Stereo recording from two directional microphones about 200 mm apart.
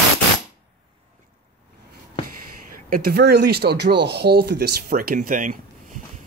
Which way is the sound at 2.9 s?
50° right (ahead or behind).